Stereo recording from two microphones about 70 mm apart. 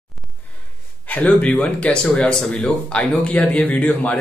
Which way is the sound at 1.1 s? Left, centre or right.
Left.